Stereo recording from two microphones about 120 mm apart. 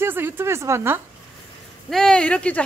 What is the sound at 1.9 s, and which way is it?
Speech, 5° left (ahead or behind).